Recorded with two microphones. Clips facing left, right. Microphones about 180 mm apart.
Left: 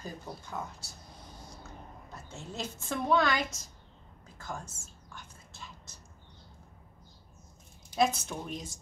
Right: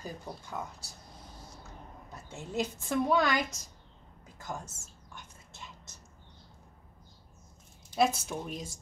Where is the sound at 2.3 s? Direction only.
15° right (ahead or behind).